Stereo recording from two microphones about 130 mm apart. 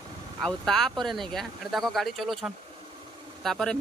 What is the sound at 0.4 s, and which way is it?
Speech, 5° left (ahead or behind).